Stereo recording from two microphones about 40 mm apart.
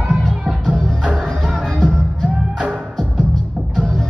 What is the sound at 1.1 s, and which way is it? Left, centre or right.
Music, centre.